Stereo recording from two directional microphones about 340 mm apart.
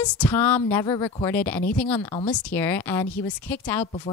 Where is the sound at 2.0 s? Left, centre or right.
Centre.